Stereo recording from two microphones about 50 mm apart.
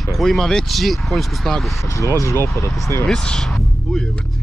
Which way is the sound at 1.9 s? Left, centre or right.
Left.